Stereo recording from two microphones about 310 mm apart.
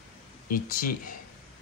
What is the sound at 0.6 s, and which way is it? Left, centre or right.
Speech, left.